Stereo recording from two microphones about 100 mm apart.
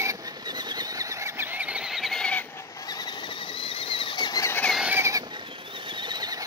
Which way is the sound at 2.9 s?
40° left (ahead or behind).